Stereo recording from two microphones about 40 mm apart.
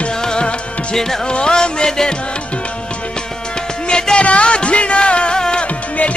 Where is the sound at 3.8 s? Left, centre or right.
Centre.